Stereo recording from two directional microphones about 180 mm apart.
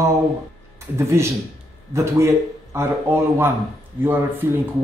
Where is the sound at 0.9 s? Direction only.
15° right (ahead or behind).